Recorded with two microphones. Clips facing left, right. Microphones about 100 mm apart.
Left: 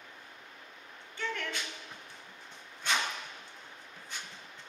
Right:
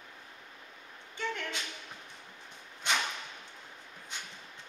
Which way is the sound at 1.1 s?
20° right (ahead or behind).